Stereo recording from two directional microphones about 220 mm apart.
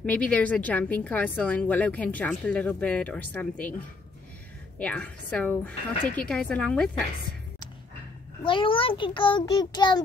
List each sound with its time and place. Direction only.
0.0 s speech: 5° left (ahead or behind)
4.7 s a woman's voice: 5° left (ahead or behind)
8.5 s child singing: 25° left (ahead or behind)